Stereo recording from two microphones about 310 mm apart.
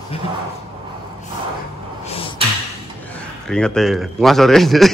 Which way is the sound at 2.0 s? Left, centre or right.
Centre.